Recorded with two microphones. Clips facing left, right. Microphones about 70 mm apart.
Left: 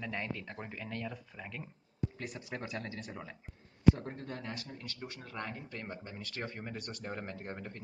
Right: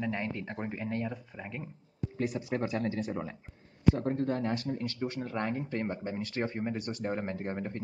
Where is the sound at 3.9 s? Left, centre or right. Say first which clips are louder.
Right 12 dB; right.